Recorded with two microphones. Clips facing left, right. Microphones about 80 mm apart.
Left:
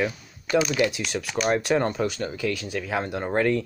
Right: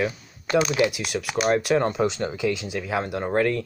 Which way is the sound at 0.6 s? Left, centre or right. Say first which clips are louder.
Right 2 dB; right.